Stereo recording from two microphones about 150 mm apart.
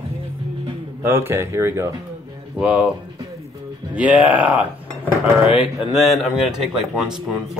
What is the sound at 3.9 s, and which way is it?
Speech, 10° right (ahead or behind).